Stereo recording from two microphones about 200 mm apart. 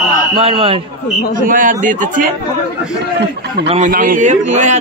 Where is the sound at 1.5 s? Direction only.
40° right (ahead or behind).